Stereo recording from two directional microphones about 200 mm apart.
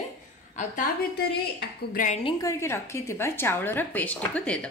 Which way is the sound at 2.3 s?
15° left (ahead or behind).